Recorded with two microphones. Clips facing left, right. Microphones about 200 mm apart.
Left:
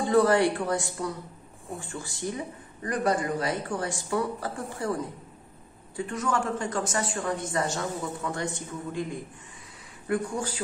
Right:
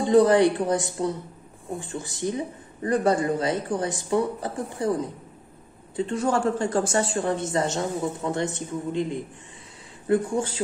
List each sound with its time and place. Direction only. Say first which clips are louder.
0.0 s a man's voice: right 4 dB; 20° right (ahead or behind)